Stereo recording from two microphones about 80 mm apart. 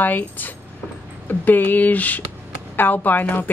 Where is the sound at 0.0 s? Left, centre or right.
Left.